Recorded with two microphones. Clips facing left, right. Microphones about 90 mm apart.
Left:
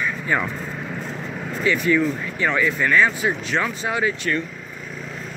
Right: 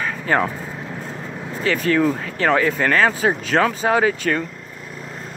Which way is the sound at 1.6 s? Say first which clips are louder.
Right 1 dB; 70° right (ahead or behind).